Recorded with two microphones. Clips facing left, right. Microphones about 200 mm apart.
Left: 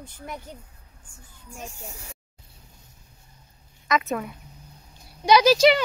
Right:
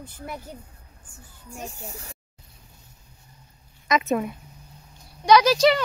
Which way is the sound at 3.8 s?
20° right (ahead or behind).